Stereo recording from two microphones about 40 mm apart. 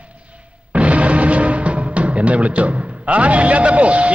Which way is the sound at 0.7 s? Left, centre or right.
Right.